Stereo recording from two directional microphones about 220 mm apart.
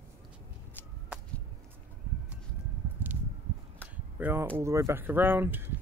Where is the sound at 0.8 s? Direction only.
10° left (ahead or behind).